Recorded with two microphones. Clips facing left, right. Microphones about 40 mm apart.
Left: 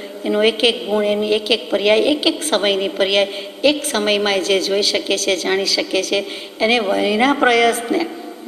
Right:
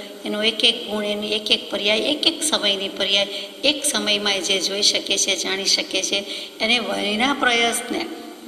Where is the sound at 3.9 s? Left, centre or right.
Left.